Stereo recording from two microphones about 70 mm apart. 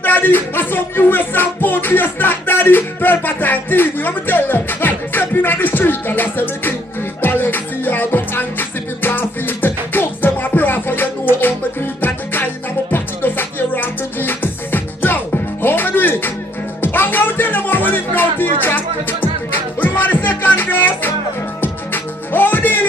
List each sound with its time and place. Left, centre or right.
0.0 s music: left